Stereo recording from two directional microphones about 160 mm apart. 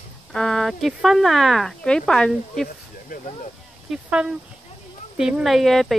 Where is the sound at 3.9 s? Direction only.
5° right (ahead or behind).